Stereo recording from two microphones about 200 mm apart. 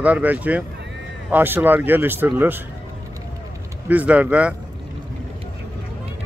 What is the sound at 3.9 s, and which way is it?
Speech, 5° right (ahead or behind).